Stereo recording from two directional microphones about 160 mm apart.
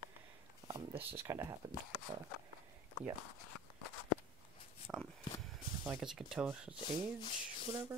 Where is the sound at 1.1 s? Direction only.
15° right (ahead or behind).